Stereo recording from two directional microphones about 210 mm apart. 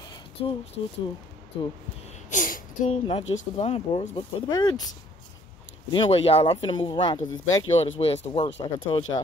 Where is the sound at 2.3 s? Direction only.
40° left (ahead or behind); by 4.8 s 20° left (ahead or behind).